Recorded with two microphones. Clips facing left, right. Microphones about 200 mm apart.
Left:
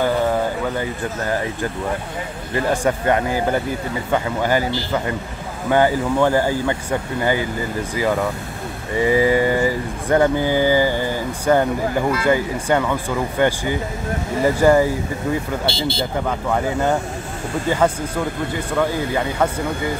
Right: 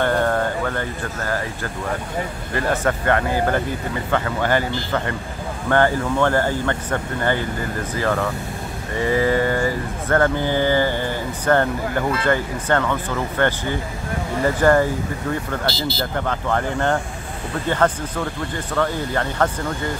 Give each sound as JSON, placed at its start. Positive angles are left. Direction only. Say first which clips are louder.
{"t": 0.0, "sound": "a sound", "louder": "left 1 dB", "side_deg": 5}
{"t": 2.5, "sound": "speech", "louder": "left 2 dB", "side_deg": 15}
{"t": 5.7, "sound": "speech", "louder": "left 2 dB", "side_deg": 10}
{"t": 15.7, "sound": "speech", "louder": "left 2 dB", "side_deg": 30}
{"t": 16.2, "sound": "speech", "louder": "even", "side_deg": 10}